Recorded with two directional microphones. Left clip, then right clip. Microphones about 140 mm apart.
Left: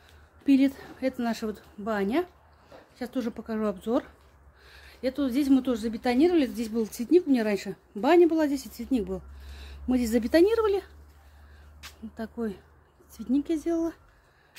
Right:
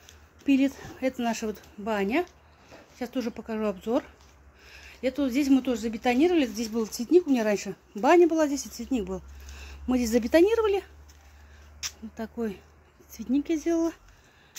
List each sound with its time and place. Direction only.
0.5 s speech: 15° left (ahead or behind)
0.9 s a woman's voice: 5° left (ahead or behind)
8.5 s speech: 90° left
9.1 s speech: centre (ahead or behind)
12.2 s a woman's voice: centre (ahead or behind)